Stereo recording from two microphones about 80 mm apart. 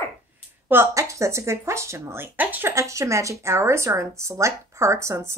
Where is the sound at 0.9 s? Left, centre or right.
Right.